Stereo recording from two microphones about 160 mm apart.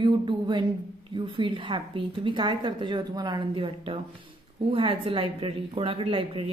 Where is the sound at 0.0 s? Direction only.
30° right (ahead or behind).